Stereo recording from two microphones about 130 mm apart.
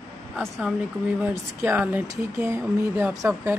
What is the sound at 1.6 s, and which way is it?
Speech, 15° right (ahead or behind).